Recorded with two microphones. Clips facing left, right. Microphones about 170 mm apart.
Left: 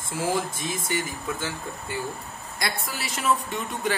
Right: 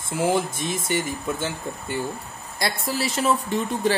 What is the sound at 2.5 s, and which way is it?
Speech, 30° right (ahead or behind).